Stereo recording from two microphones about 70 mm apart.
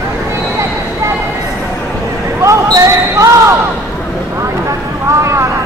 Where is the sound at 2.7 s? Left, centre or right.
Right.